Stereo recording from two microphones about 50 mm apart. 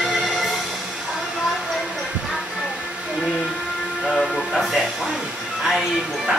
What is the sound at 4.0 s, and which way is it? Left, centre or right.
Music, centre.